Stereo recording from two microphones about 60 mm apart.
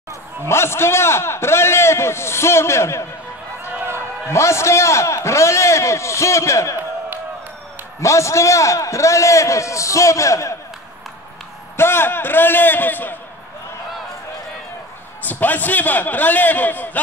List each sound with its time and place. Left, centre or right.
0.5 s a man's voice: left
4.3 s a man's voice: left
8.0 s a man's voice: left
11.7 s a man's voice: left
15.2 s a man's voice: left